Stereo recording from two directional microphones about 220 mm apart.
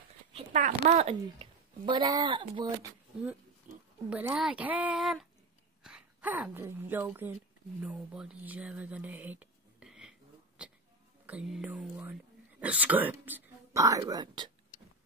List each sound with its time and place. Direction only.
0.4 s a child's voice: 35° right (ahead or behind)
3.7 s oink: 35° right (ahead or behind)
4.1 s speech: 5° right (ahead or behind)
10.6 s a sound: 5° right (ahead or behind)
11.2 s speech: 5° right (ahead or behind)